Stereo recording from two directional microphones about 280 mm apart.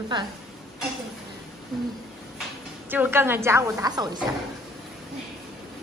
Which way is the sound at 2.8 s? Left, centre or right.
Centre.